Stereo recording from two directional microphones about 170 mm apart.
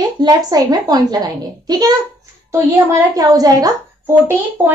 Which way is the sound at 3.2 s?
20° right (ahead or behind).